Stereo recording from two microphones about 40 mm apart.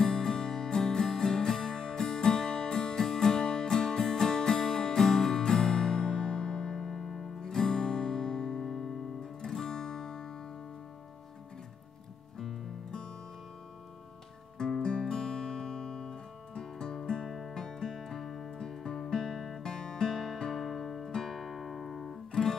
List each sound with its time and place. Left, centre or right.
0.0 s music: centre
12.4 s music: centre
14.6 s guitar: centre
17.3 s music: centre
17.6 s music: centre
19.6 s music: centre
21.5 s music: centre